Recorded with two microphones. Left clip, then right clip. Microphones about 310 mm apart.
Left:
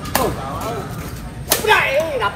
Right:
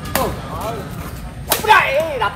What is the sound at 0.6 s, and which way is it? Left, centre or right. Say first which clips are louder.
Whip: even; centre.